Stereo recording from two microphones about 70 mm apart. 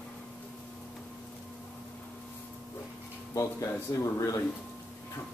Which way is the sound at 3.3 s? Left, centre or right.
Left.